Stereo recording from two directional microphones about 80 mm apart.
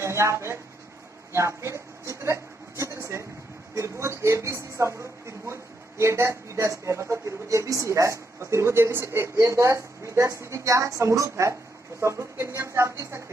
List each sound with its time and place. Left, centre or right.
0.0 s a man's voice: right